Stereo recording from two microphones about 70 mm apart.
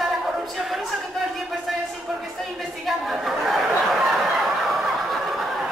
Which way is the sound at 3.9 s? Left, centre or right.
Centre.